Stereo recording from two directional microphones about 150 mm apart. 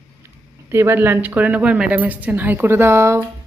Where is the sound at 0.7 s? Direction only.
15° right (ahead or behind).